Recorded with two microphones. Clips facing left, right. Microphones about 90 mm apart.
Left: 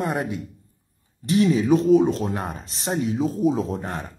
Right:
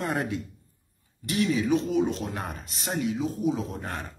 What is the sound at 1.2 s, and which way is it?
Speech, 35° left (ahead or behind).